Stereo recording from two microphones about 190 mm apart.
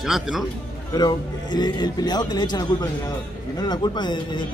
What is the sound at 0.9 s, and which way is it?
A man's voice, 20° left (ahead or behind).